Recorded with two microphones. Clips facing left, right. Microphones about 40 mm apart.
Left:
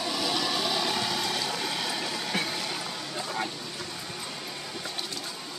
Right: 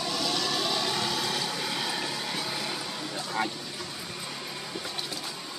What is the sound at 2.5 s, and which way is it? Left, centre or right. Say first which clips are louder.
Music: even; centre.